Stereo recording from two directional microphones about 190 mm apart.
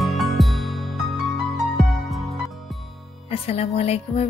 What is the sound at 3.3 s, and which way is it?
Speech, 35° left (ahead or behind).